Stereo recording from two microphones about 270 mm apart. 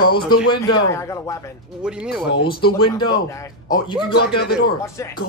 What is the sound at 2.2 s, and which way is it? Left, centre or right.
Speech, left.